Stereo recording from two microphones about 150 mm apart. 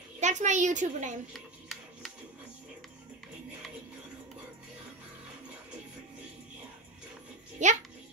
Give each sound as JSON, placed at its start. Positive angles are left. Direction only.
{"t": 0.2, "sound": "a woman's voice", "side_deg": -55}
{"t": 1.3, "sound": "a sound", "side_deg": 5}
{"t": 7.6, "sound": "a woman's voice", "side_deg": -55}